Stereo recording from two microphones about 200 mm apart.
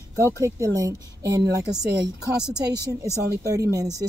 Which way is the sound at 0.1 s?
15° right (ahead or behind).